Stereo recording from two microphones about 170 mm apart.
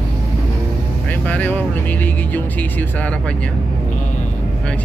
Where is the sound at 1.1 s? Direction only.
10° left (ahead or behind).